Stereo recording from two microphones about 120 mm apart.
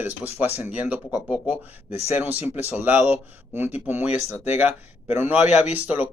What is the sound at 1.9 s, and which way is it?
Speech, 60° left (ahead or behind).